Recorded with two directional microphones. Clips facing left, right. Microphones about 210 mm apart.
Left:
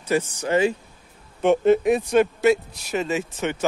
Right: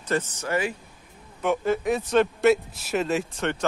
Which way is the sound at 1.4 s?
25° left (ahead or behind).